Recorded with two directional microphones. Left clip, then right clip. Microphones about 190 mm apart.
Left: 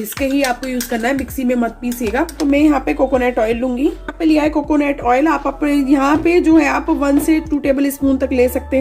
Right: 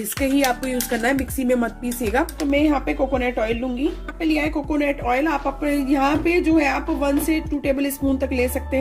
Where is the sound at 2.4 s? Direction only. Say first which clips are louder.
Left 8 dB; 5° left (ahead or behind).